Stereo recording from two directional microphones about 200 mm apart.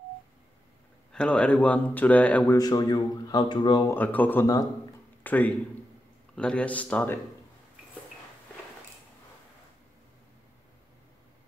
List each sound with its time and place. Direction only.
1.1 s speech: 5° left (ahead or behind)
2.6 s speech: 20° left (ahead or behind)
3.9 s a man's voice: 10° left (ahead or behind)